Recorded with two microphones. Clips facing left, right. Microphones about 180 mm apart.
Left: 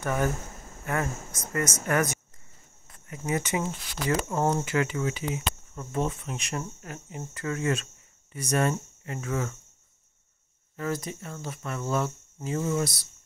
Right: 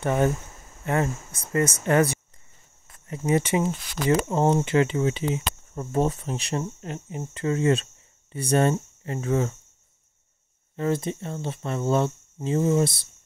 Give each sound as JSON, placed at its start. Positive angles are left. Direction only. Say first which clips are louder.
{"t": 0.0, "sound": "speech", "louder": "right 5 dB", "side_deg": -25}
{"t": 3.1, "sound": "speech", "louder": "right 6 dB", "side_deg": -30}
{"t": 10.8, "sound": "speech", "louder": "right 6 dB", "side_deg": -25}